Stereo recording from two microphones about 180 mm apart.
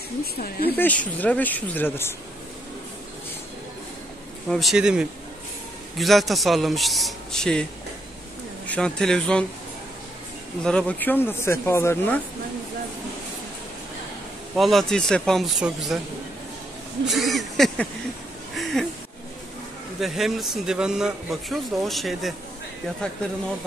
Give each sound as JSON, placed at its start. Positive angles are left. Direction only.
{"t": 0.2, "sound": "speech", "side_deg": 55}
{"t": 0.7, "sound": "speech", "side_deg": 10}
{"t": 4.5, "sound": "a man's voice", "side_deg": 0}
{"t": 8.6, "sound": "a man's voice", "side_deg": 5}
{"t": 10.6, "sound": "speech", "side_deg": 5}
{"t": 14.6, "sound": "a man's voice", "side_deg": 0}
{"t": 17.0, "sound": "a man's voice", "side_deg": 0}
{"t": 20.0, "sound": "a man's voice", "side_deg": 0}